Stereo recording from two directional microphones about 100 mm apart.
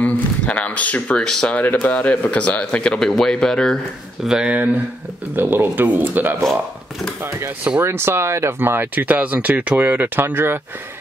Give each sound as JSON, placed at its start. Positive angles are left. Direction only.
{"t": 0.0, "sound": "speech", "side_deg": 15}
{"t": 1.6, "sound": "speech", "side_deg": 20}
{"t": 4.2, "sound": "speech", "side_deg": -5}
{"t": 5.3, "sound": "speech", "side_deg": -20}
{"t": 7.8, "sound": "speech", "side_deg": -25}